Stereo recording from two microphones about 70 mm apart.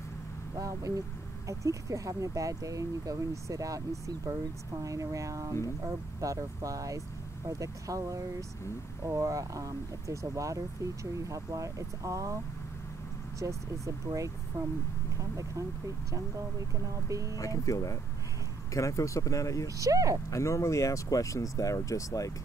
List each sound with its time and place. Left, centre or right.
0.6 s speech: right
13.4 s speech: right
16.8 s speech: right
17.4 s speech: left
19.8 s speech: right
20.2 s speech: left